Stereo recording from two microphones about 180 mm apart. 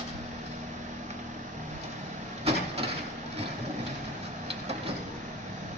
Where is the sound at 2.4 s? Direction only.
35° right (ahead or behind).